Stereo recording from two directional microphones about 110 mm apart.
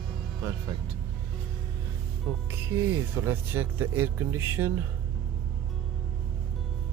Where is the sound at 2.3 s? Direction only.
15° right (ahead or behind).